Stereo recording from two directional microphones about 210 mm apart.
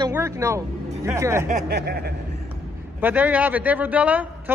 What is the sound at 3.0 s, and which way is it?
Speech, 10° right (ahead or behind).